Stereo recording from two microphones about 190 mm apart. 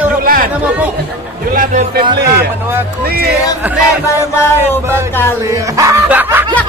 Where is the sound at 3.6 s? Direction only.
10° right (ahead or behind).